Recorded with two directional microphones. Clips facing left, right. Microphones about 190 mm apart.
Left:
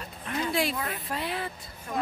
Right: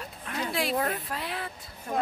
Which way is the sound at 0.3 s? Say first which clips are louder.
Left 2 dB; centre (ahead or behind).